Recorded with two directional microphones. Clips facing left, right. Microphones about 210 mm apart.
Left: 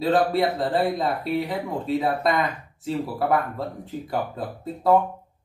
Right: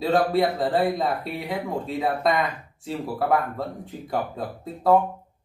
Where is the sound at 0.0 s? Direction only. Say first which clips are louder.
Even; centre (ahead or behind).